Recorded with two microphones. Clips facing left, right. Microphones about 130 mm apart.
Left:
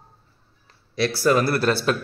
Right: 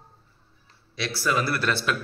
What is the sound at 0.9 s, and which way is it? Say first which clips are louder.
Speech: left 7 dB; 45° left (ahead or behind).